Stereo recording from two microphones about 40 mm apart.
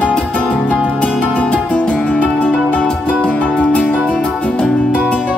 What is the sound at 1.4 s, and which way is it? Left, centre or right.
Music, left.